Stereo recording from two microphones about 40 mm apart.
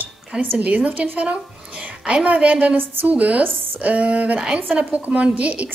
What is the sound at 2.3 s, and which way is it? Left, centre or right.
A woman's voice, right.